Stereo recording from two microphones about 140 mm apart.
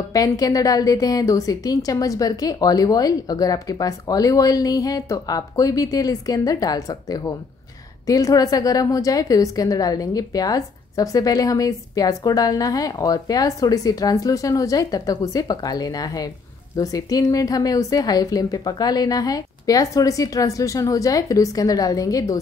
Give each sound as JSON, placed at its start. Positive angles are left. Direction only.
{"t": 0.1, "sound": "a woman's voice", "side_deg": 25}